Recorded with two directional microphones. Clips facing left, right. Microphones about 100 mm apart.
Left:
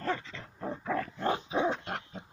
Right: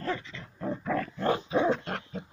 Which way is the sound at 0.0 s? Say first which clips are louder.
Even; 40° left (ahead or behind).